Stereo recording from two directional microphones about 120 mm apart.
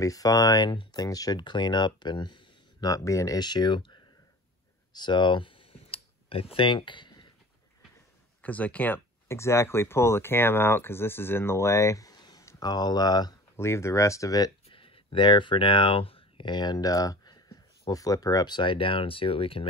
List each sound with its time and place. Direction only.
0.0 s speech: 30° left (ahead or behind)
4.9 s computer keyboard: 40° left (ahead or behind)
8.4 s speech: 10° left (ahead or behind); by 13.3 s 35° left (ahead or behind)
13.6 s speech: 25° left (ahead or behind)
14.7 s speech: 45° left (ahead or behind)